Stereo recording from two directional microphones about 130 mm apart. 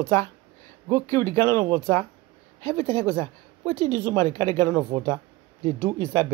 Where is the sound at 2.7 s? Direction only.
50° right (ahead or behind).